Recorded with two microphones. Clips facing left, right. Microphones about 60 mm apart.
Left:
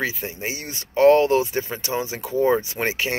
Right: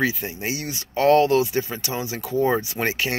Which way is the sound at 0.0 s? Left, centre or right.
Left.